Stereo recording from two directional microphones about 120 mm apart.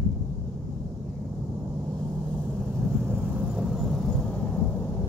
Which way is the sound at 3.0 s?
15° right (ahead or behind).